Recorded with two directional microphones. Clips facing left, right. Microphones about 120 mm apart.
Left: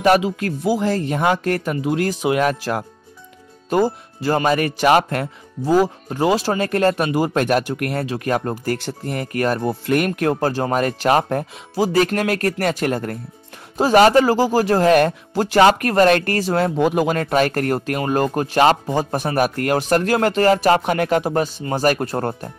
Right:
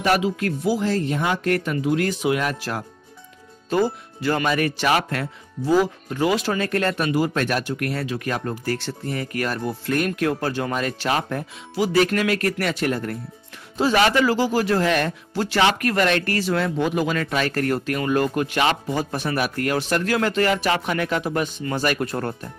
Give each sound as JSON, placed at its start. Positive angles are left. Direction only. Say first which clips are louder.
{"t": 0.1, "sound": "speech", "louder": "left 4 dB", "side_deg": 30}
{"t": 0.7, "sound": "speech", "louder": "left 2 dB", "side_deg": 45}
{"t": 9.3, "sound": "speech", "louder": "left 8 dB", "side_deg": 35}
{"t": 9.6, "sound": "speech", "louder": "left 5 dB", "side_deg": 20}
{"t": 9.9, "sound": "speech", "louder": "left 3 dB", "side_deg": 55}
{"t": 10.4, "sound": "speech", "louder": "left 5 dB", "side_deg": 40}